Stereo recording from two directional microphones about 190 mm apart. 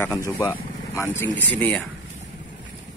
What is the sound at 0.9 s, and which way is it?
Speech, 10° left (ahead or behind).